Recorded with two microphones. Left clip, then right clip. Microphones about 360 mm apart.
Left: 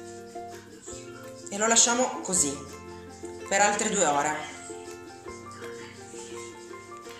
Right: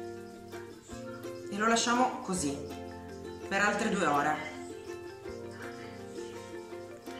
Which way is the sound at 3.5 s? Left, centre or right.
Left.